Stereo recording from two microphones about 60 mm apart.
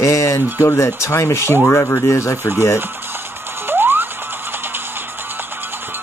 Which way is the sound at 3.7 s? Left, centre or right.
Right.